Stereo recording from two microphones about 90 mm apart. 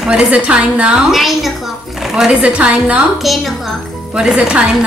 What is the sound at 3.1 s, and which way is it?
A woman's voice, centre (ahead or behind).